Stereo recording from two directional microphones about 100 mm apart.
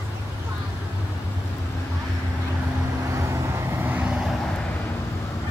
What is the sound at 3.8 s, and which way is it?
Vehicle, 15° right (ahead or behind).